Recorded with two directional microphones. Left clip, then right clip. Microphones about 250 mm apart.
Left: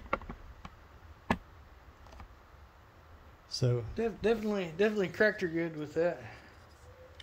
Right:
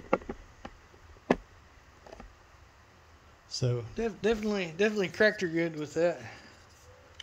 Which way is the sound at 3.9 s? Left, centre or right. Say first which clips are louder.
Right 2 dB; right.